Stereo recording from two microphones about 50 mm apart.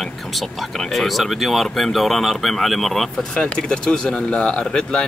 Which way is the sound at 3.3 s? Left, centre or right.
Centre.